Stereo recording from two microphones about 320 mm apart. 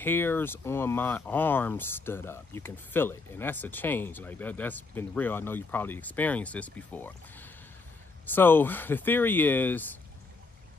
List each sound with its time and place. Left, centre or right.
0.0 s speech: centre